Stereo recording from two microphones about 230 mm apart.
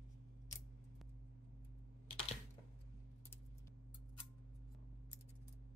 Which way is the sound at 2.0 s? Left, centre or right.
Left.